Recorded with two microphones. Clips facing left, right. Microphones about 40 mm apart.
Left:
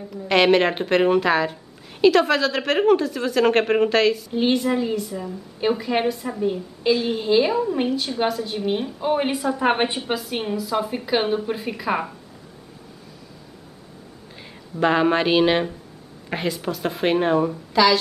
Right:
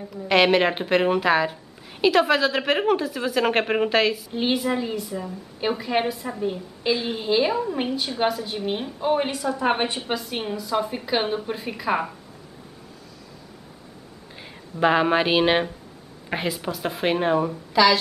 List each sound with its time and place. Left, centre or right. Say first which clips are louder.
0.1 s speech: left 1 dB; centre
9.2 s a woman's voice: left 3 dB; centre
9.9 s speech: left 2 dB; centre
14.8 s speech: left 1 dB; centre